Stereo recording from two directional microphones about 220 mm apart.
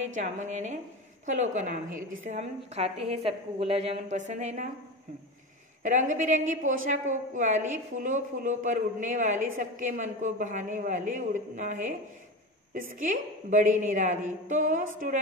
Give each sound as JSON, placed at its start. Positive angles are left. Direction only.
{"t": 0.1, "sound": "a woman's voice", "side_deg": -35}
{"t": 5.8, "sound": "a woman's voice", "side_deg": -35}
{"t": 13.0, "sound": "a woman's voice", "side_deg": -35}